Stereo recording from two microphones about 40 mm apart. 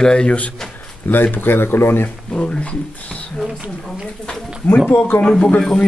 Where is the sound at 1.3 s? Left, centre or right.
Left.